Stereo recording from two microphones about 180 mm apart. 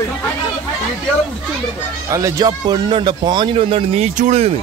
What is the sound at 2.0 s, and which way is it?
Speech, 15° right (ahead or behind).